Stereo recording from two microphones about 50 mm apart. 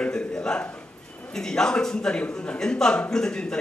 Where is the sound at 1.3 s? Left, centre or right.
Centre.